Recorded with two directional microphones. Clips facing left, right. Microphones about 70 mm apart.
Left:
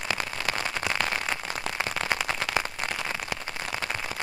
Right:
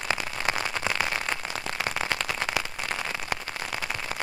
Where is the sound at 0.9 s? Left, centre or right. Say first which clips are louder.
Right 1 dB; right.